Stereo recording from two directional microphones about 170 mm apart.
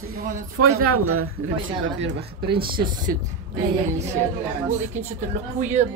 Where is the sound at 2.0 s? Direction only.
85° right.